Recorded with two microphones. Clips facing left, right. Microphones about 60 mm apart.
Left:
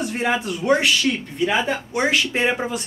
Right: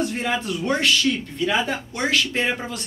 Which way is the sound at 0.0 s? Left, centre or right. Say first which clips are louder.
Left 2 dB; centre.